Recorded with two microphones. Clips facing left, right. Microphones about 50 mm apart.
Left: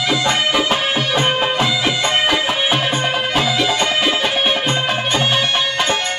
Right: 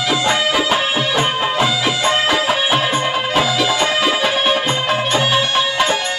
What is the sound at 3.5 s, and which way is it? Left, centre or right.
Music, centre.